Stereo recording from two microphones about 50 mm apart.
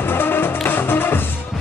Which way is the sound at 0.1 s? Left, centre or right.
Left.